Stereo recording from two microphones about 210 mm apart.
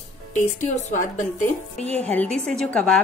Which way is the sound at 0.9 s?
35° left (ahead or behind).